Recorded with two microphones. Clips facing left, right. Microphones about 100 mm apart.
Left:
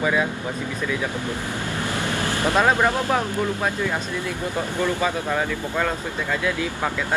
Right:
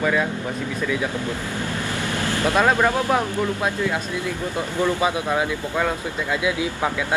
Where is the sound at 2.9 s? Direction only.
15° right (ahead or behind).